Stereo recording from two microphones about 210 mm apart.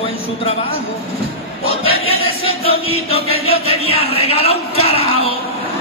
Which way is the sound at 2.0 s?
25° left (ahead or behind).